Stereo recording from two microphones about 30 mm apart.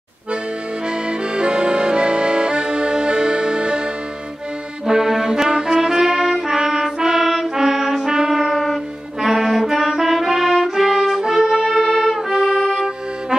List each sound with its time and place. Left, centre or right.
0.8 s accordion: right
4.8 s accordion: centre
5.4 s brass instrument: centre
7.5 s music: centre
9.2 s brass instrument: centre
11.1 s music: centre
11.7 s music: centre
12.3 s music: centre